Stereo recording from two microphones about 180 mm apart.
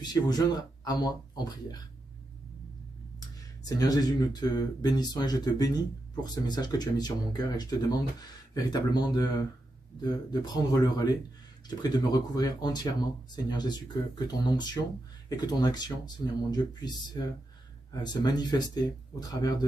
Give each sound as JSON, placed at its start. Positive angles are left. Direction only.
{"t": 0.0, "sound": "speech", "side_deg": 20}
{"t": 3.2, "sound": "speech", "side_deg": 20}